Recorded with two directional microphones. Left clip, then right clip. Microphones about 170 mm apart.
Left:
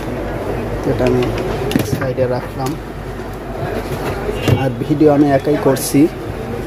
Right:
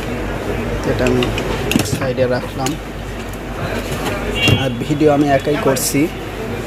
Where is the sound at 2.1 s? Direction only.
5° left (ahead or behind).